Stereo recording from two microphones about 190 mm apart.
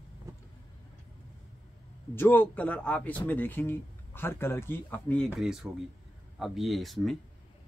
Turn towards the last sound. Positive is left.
turn(degrees=0)  # may be behind; listen again after turning